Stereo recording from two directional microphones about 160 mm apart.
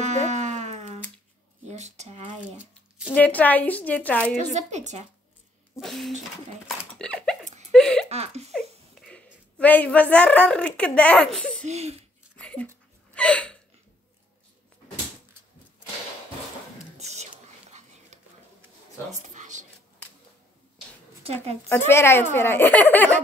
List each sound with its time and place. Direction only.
0.0 s a sound: 45° right (ahead or behind)
3.1 s speech: 10° left (ahead or behind)
4.6 s speech: 45° right (ahead or behind)
5.8 s a sound: centre (ahead or behind)
8.9 s speech: 5° left (ahead or behind)
11.6 s speech: 40° right (ahead or behind)
12.4 s a sound: 5° left (ahead or behind)
13.1 s hiccup: 5° left (ahead or behind)
17.1 s whispering: 45° right (ahead or behind)
19.3 s a sound: 50° right (ahead or behind)
21.2 s speech: 40° right (ahead or behind)
21.6 s speech: 15° left (ahead or behind)